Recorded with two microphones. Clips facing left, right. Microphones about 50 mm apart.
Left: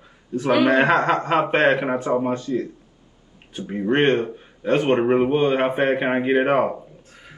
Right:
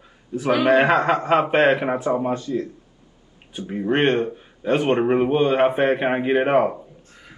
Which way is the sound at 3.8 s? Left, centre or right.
Centre.